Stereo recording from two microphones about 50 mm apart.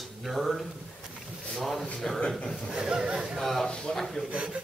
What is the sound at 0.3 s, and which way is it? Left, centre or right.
Speech, centre.